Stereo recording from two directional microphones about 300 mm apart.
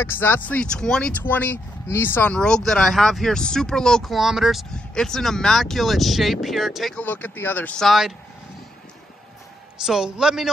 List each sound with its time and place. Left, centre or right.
0.0 s speech: centre
9.8 s speech: centre